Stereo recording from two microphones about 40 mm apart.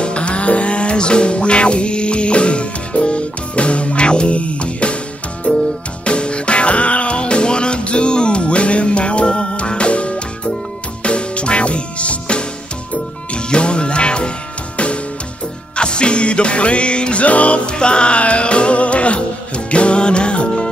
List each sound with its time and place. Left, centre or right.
0.0 s music: left
15.7 s music: left
17.6 s music: left